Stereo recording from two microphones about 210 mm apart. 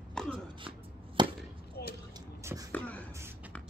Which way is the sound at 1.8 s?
50° left (ahead or behind).